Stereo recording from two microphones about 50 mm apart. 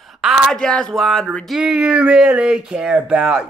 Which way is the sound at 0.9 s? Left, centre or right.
Centre.